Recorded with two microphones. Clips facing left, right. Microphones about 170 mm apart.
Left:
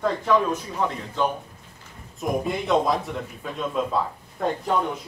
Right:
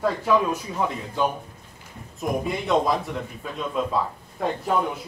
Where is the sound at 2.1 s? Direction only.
Centre (ahead or behind).